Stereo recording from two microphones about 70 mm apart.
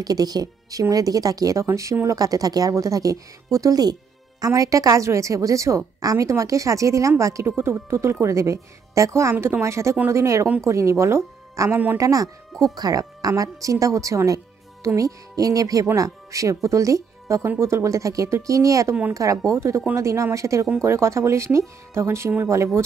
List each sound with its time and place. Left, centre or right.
0.0 s a woman's voice: right
7.5 s a woman's voice: right
11.7 s speech: right
12.0 s a woman's voice: right